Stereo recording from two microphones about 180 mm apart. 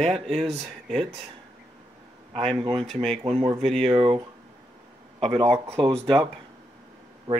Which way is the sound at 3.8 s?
30° right (ahead or behind).